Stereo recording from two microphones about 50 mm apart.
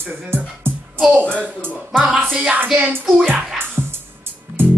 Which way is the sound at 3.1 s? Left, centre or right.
Centre.